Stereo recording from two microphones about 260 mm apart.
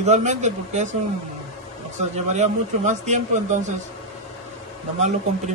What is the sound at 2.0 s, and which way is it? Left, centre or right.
Speech, right.